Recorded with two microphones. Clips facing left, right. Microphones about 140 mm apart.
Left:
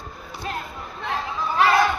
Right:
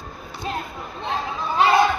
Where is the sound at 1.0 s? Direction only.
25° right (ahead or behind).